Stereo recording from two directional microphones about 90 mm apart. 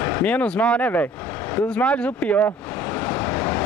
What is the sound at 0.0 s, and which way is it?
Speech, 15° left (ahead or behind).